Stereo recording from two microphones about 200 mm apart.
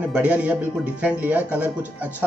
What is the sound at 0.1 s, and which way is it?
Speech, 5° right (ahead or behind).